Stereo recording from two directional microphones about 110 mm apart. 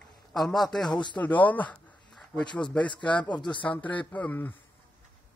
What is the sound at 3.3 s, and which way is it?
Speech, 45° left (ahead or behind).